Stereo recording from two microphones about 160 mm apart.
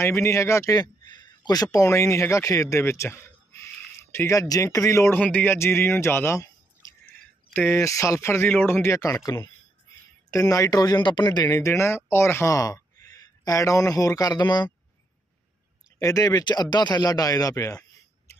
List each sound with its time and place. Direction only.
0.0 s a man's voice: 15° left (ahead or behind)
16.0 s speech: 20° left (ahead or behind)